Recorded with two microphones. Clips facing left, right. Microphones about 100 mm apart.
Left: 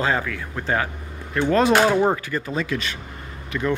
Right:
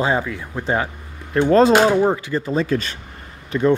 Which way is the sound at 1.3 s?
35° right (ahead or behind).